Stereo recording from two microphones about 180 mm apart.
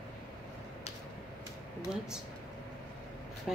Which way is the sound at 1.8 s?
5° right (ahead or behind).